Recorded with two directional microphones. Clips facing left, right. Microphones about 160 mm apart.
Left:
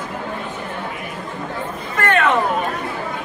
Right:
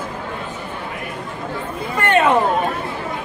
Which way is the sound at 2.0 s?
25° right (ahead or behind).